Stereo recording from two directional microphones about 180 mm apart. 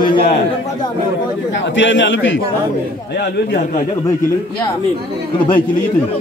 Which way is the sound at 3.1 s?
60° left (ahead or behind).